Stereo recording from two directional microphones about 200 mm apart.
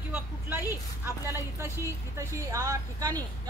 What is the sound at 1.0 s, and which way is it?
A woman's voice, 10° right (ahead or behind).